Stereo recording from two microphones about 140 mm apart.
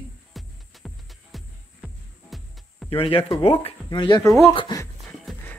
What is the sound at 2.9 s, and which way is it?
Speech, 40° left (ahead or behind).